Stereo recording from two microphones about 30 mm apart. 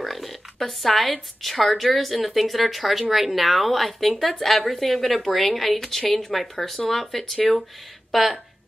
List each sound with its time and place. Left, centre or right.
0.0 s a woman's voice: centre